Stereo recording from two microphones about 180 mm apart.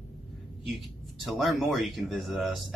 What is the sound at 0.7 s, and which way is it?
Speech, centre (ahead or behind).